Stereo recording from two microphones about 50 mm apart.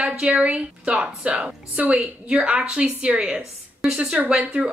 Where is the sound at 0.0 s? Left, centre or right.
Right.